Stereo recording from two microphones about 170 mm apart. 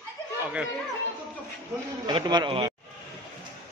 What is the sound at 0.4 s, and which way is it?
Speech, 5° right (ahead or behind).